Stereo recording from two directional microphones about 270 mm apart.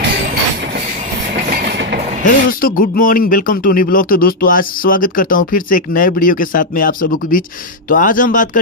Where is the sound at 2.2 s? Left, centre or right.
Left.